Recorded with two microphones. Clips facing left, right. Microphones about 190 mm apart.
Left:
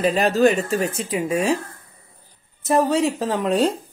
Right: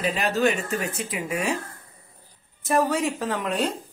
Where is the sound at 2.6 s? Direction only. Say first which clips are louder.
Left 4 dB; 25° left (ahead or behind).